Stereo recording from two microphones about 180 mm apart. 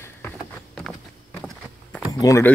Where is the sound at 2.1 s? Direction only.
20° left (ahead or behind).